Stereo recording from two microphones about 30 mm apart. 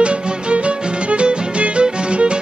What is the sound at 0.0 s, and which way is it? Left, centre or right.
Music, right.